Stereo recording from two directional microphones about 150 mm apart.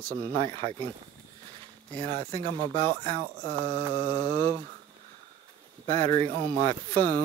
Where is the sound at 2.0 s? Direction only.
35° right (ahead or behind).